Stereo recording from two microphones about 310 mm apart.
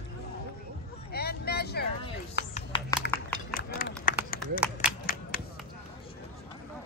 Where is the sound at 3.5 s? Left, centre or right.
Left.